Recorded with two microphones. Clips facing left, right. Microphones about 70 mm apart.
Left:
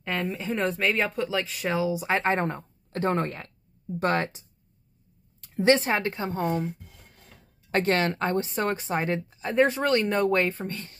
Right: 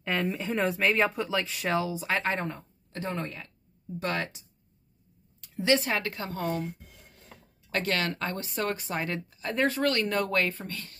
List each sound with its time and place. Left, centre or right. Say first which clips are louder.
0.0 s a sound: even; centre
0.4 s speech: left 1 dB; centre
1.9 s speech: left 4 dB; centre
2.1 s a woman's voice: left 4 dB; left
2.4 s a woman's voice: left 5 dB; left
4.0 s a woman's voice: left 6 dB; left
7.7 s a woman's voice: left 5 dB; left